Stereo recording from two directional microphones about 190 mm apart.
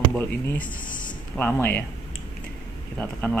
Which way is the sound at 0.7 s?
45° left (ahead or behind).